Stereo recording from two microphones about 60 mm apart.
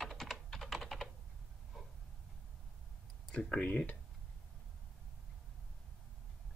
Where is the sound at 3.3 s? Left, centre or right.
Centre.